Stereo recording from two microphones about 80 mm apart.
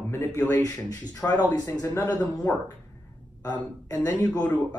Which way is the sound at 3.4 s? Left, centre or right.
Left.